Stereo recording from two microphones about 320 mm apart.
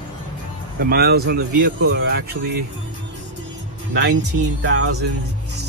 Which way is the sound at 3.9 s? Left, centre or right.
Right.